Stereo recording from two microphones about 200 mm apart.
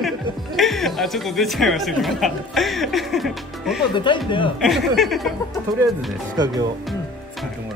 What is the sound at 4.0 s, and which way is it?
Speech, 25° left (ahead or behind).